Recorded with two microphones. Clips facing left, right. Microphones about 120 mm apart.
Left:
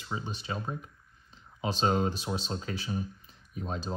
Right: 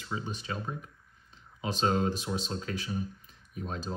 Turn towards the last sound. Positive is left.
turn(degrees=30)  # may be behind; listen again after turning